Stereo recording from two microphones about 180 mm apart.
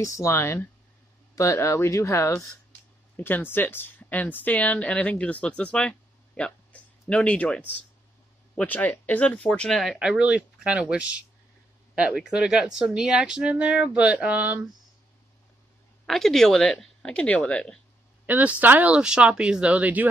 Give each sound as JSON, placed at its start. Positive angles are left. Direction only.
{"t": 0.0, "sound": "speech", "side_deg": 15}
{"t": 16.1, "sound": "speech", "side_deg": 0}
{"t": 18.2, "sound": "speech", "side_deg": -10}